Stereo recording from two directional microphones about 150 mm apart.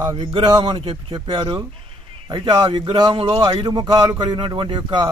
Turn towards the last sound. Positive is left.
turn(degrees=-30)  # may be behind; listen again after turning